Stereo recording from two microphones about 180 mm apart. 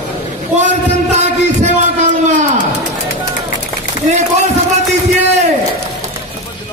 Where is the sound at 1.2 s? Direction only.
40° right (ahead or behind).